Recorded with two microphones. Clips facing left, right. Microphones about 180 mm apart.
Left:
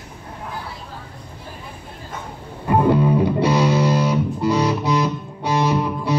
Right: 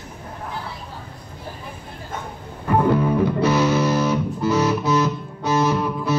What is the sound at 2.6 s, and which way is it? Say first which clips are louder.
Music: left 2 dB; 15° left (ahead or behind).